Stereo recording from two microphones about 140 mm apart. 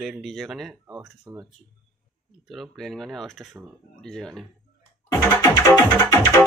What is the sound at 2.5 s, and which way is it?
Speech, centre (ahead or behind).